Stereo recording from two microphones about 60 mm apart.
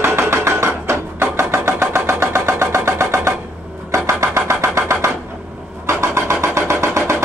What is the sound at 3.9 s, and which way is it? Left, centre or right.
Vehicle, right.